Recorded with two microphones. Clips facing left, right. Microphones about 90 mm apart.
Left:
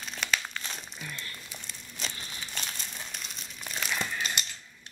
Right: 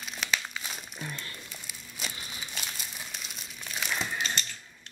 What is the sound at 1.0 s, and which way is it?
Crumpling, 20° right (ahead or behind).